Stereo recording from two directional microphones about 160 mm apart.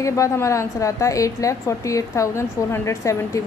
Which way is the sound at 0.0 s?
20° left (ahead or behind).